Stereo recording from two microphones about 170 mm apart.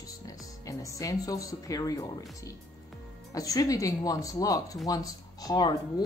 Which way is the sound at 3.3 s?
20° left (ahead or behind).